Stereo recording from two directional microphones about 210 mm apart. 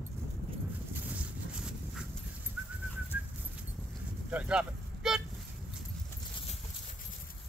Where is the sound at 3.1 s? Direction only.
10° right (ahead or behind).